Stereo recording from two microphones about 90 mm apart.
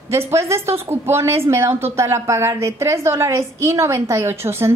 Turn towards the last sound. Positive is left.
turn(degrees=-30)  # may be behind; listen again after turning